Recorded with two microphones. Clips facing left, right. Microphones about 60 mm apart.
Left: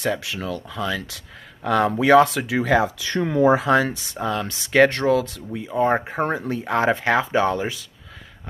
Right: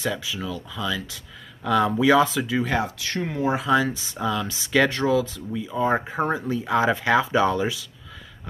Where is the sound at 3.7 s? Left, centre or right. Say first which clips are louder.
Left 2 dB; left.